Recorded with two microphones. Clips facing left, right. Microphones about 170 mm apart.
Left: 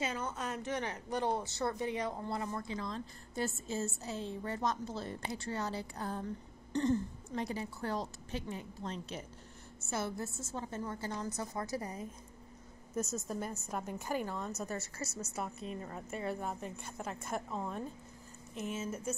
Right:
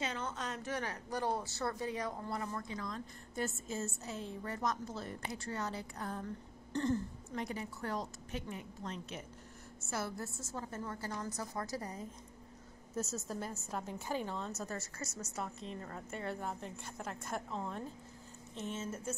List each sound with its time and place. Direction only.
0.0 s a sound: 5° left (ahead or behind)
0.6 s a woman's voice: 20° left (ahead or behind)
6.7 s speech: 20° left (ahead or behind)
7.3 s a woman's voice: 30° left (ahead or behind)
12.9 s a woman's voice: 15° left (ahead or behind)
14.6 s a woman's voice: 25° left (ahead or behind)
15.6 s a woman's voice: 15° left (ahead or behind)